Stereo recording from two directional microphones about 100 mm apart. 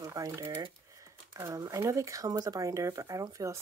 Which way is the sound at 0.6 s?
40° right (ahead or behind).